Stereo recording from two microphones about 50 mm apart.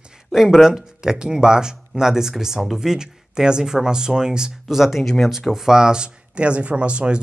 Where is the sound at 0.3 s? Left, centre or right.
Centre.